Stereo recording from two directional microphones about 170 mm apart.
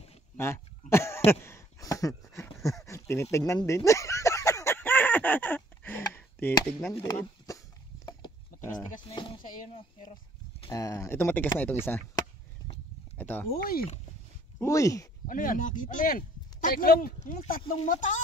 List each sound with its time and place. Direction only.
0.4 s throat clearing: 15° left (ahead or behind)
2.6 s a sound: 20° left (ahead or behind)
9.0 s speech: 30° left (ahead or behind)
10.7 s speech: 20° left (ahead or behind)
13.2 s speech: 10° left (ahead or behind)
13.6 s speech: 60° left (ahead or behind)
14.6 s speech: 20° left (ahead or behind)
15.2 s speech: 55° left (ahead or behind)